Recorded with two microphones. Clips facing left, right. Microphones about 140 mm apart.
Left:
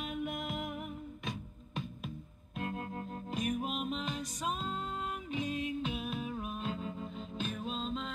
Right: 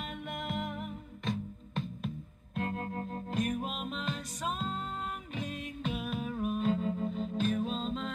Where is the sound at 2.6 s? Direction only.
45° right (ahead or behind).